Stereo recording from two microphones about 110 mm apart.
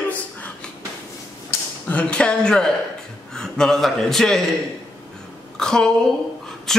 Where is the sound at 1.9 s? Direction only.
10° left (ahead or behind).